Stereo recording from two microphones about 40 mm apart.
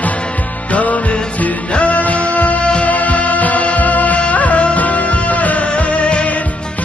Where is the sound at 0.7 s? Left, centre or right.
Left.